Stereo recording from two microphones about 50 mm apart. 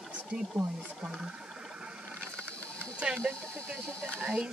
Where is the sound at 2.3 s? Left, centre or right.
Left.